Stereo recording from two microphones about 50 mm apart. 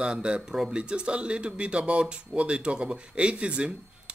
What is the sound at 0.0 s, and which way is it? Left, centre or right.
Speech, centre.